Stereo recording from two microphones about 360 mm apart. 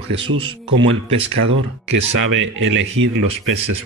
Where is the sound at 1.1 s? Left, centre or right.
Right.